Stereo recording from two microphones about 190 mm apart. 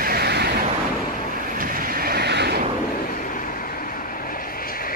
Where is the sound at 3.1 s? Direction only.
45° left (ahead or behind).